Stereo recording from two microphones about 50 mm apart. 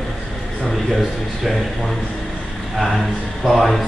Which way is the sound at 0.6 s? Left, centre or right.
Centre.